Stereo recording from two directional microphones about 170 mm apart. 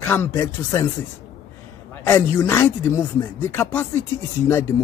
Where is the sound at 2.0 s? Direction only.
15° left (ahead or behind).